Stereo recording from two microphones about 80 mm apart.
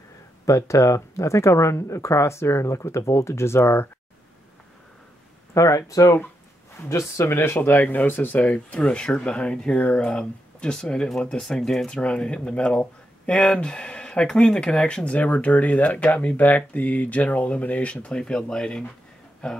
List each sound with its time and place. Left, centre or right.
0.5 s speech: left
5.5 s speech: left; by 19.6 s centre